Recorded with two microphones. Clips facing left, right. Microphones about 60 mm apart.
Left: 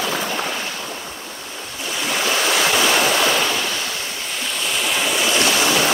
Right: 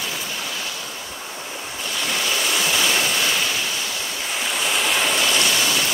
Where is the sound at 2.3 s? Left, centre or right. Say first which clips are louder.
Left 5 dB; left.